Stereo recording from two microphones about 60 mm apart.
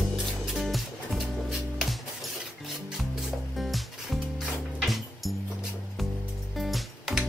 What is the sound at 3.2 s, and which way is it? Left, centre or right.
Music, centre.